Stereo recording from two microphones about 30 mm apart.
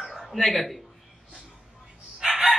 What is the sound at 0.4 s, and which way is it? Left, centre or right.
Speech, centre.